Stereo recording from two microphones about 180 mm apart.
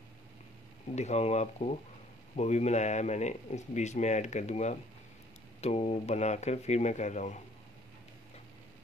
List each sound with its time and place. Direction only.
0.9 s a man's voice: 40° left (ahead or behind)